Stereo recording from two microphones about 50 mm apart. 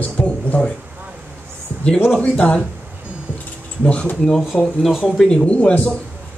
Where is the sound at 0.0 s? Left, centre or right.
Left.